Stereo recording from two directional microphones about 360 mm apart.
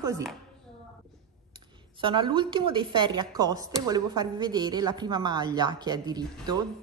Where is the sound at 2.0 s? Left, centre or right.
Centre.